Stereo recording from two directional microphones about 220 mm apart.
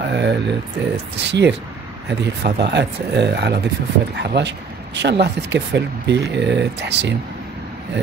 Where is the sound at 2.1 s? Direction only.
50° right (ahead or behind).